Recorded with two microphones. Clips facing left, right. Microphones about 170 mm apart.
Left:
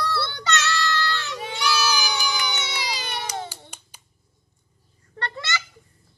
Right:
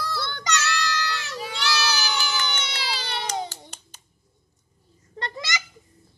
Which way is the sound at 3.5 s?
10° left (ahead or behind).